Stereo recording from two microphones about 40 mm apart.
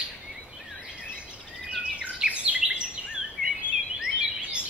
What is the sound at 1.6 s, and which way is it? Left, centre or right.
Bird vocalization, right.